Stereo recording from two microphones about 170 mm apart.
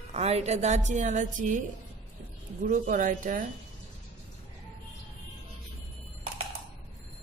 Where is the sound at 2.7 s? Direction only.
50° right (ahead or behind).